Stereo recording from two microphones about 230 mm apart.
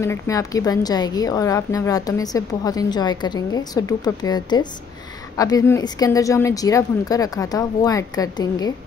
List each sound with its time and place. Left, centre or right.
0.0 s a woman's voice: centre